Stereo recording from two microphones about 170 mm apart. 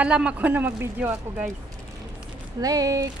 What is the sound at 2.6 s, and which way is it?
Speech, 20° right (ahead or behind).